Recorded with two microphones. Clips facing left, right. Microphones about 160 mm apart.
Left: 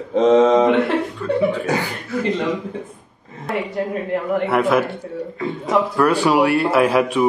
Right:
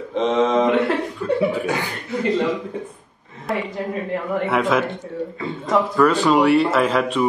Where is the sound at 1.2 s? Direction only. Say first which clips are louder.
Even; 10° right (ahead or behind).